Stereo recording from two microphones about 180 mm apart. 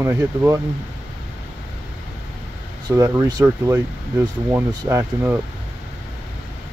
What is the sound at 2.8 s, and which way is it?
Speech, 15° right (ahead or behind).